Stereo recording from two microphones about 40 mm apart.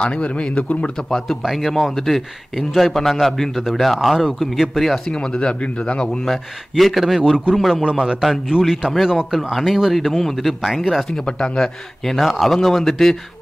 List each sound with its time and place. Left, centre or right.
0.0 s a man's voice: left
1.4 s speech: centre
5.4 s a man's voice: left
6.8 s speech: centre
7.2 s a man's voice: centre
9.0 s speech: centre
11.5 s speech: centre